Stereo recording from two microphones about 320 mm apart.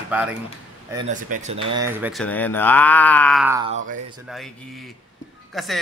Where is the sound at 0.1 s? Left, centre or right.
Centre.